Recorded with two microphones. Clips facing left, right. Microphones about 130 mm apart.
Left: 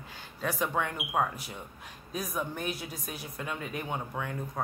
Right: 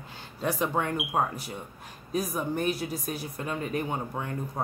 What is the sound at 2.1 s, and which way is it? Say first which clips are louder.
Speech: right 5 dB; 40° right (ahead or behind).